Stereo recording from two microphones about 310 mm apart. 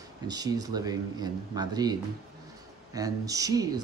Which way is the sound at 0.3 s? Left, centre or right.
Centre.